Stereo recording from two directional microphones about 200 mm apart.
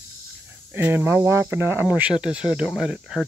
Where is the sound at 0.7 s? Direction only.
10° right (ahead or behind).